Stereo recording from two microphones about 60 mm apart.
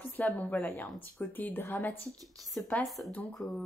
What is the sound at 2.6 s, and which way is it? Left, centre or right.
Speech, left.